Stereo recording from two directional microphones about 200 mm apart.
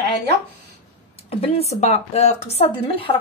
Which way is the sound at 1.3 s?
30° left (ahead or behind).